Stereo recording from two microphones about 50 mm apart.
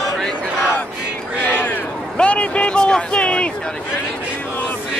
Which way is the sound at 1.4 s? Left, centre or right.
Left.